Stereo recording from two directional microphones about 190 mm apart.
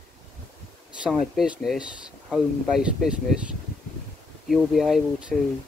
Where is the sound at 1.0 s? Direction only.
5° right (ahead or behind).